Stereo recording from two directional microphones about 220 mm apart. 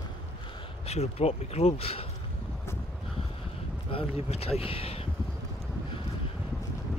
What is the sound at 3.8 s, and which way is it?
Speech, 25° left (ahead or behind).